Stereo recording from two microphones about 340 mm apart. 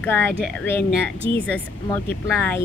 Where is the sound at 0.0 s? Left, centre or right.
Centre.